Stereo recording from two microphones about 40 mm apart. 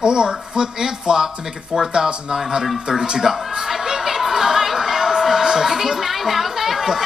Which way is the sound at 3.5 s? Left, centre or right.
Centre.